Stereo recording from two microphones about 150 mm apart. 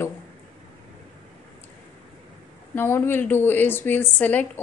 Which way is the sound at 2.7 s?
15° left (ahead or behind).